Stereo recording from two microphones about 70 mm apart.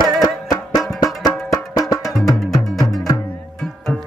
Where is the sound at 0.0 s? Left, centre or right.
Left.